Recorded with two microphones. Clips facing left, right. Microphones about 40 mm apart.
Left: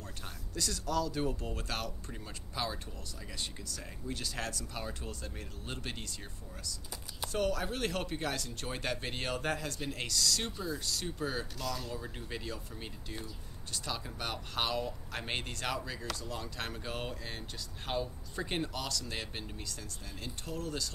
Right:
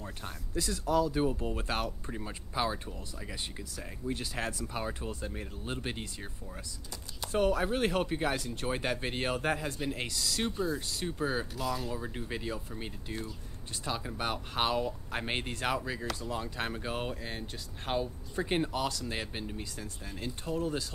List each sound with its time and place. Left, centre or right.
0.2 s speech: centre
7.3 s speech: right